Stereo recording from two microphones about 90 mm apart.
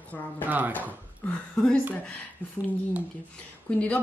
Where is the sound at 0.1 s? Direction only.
20° left (ahead or behind).